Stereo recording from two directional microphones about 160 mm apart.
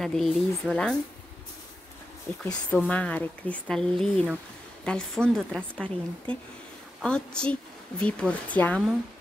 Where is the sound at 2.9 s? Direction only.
10° left (ahead or behind).